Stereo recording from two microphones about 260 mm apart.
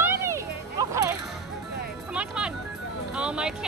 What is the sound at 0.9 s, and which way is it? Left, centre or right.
Whip, centre.